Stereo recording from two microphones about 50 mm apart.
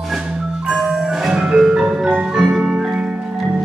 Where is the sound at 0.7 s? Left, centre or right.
Centre.